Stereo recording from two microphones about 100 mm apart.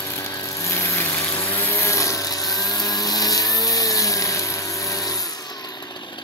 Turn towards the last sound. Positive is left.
turn(degrees=35)  # may be behind; listen again after turning